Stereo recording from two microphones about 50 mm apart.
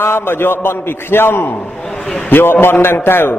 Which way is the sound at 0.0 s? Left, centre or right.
Left.